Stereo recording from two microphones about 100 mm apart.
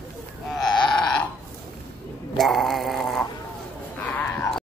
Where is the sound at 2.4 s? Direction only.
Centre (ahead or behind).